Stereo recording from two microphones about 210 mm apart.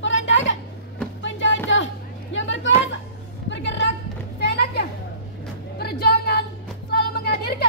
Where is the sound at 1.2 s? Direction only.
60° left (ahead or behind).